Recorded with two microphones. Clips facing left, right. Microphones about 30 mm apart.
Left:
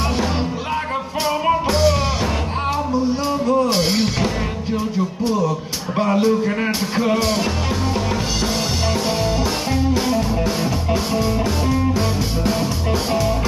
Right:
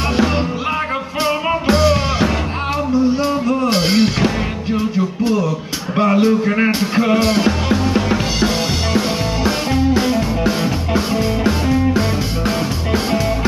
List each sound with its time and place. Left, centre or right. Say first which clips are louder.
1.7 s music: right 3 dB; right
3.4 s music: right 1 dB; right
5.9 s music: right 3 dB; right